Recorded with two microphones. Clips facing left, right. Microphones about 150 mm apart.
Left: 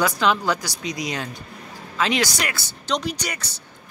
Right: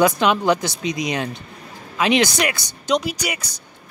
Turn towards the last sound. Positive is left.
turn(degrees=-10)  # may be behind; listen again after turning